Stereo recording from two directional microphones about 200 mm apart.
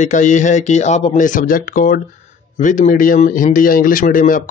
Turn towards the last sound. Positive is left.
turn(degrees=45)  # may be behind; listen again after turning